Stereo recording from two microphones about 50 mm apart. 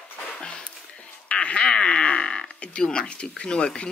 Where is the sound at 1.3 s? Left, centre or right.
Left.